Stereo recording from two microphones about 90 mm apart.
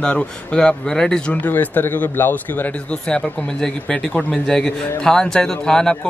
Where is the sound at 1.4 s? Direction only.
20° left (ahead or behind).